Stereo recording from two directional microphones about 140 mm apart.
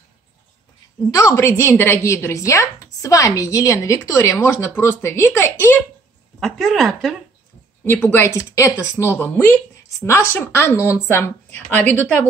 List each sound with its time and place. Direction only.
1.1 s speech: 20° left (ahead or behind)
6.4 s speech: centre (ahead or behind)
7.8 s a woman's voice: 15° left (ahead or behind)